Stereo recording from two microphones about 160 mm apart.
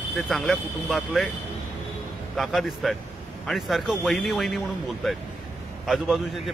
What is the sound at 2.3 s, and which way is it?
A man's voice, centre (ahead or behind).